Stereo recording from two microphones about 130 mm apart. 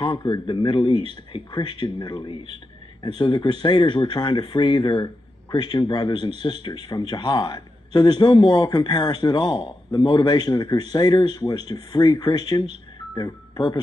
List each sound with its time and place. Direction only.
0.3 s speech: 40° left (ahead or behind)